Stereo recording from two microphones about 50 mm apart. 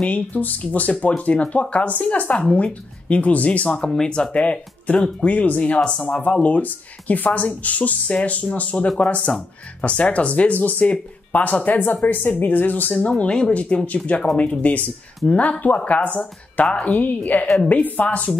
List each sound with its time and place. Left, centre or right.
0.1 s speech: left; by 4.3 s centre
4.3 s speech: left